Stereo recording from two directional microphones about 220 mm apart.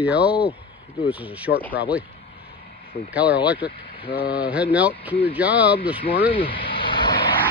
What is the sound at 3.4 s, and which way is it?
Speech, 5° right (ahead or behind).